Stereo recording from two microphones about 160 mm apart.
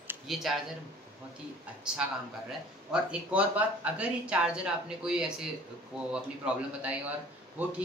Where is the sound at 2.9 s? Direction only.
5° right (ahead or behind).